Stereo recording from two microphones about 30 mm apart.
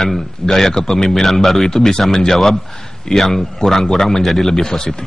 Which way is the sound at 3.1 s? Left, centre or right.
Centre.